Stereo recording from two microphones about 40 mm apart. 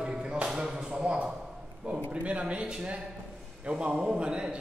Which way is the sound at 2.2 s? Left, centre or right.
Right.